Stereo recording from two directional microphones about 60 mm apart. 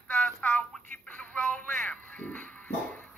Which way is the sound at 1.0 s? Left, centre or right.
Left.